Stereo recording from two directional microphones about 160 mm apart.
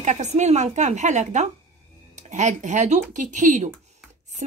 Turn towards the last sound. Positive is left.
turn(degrees=-50)  # may be behind; listen again after turning